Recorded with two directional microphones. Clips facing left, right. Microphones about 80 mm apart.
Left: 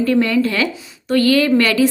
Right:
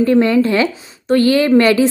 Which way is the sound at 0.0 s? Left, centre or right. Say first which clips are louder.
Right 3 dB; right.